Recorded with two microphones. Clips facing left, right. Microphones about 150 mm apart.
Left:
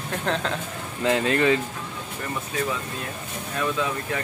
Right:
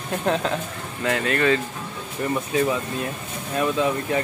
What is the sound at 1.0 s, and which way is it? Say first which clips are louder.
Speech: left 1 dB; 20° left (ahead or behind).